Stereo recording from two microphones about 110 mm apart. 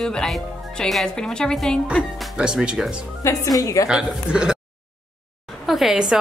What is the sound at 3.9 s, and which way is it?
Speech, 10° right (ahead or behind).